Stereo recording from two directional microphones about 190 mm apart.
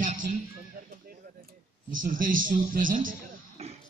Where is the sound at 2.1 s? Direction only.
45° right (ahead or behind).